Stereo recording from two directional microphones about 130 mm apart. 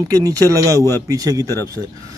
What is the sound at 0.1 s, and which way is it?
Speech, 25° right (ahead or behind).